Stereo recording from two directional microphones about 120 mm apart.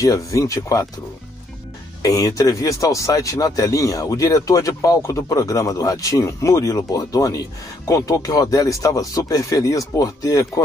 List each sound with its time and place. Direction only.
0.0 s speech: 25° left (ahead or behind)
2.0 s speech: 30° left (ahead or behind)